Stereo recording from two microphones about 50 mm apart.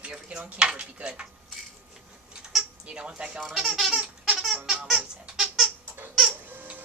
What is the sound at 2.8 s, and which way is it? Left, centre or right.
Stir, centre.